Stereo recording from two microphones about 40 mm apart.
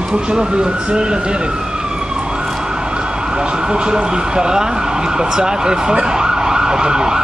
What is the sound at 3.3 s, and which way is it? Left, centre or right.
Speech, centre.